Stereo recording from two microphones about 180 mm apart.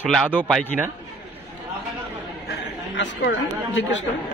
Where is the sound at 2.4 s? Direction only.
70° left (ahead or behind).